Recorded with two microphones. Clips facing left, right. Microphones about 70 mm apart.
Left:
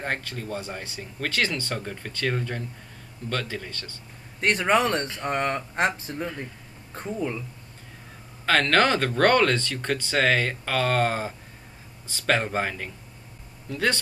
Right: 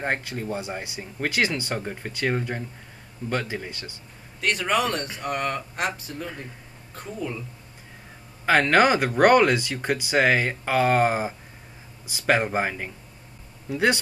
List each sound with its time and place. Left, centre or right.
0.0 s speech: centre
4.4 s speech: left
8.5 s speech: centre